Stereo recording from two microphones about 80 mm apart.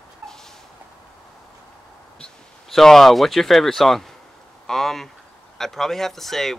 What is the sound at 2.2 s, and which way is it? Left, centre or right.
Speech, centre.